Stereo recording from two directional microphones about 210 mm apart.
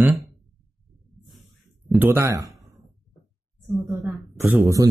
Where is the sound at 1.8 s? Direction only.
Centre (ahead or behind).